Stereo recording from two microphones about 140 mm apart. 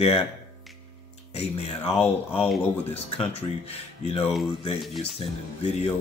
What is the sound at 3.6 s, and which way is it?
Speech, 45° left (ahead or behind).